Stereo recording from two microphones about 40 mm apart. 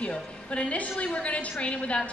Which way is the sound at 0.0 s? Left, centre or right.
Left.